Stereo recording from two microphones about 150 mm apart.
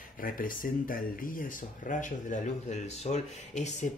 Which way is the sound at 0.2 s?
70° left (ahead or behind).